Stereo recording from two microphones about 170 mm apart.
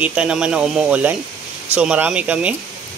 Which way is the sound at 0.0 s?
5° right (ahead or behind).